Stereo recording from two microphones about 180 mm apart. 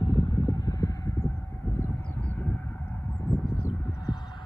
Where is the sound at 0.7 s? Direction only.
20° left (ahead or behind).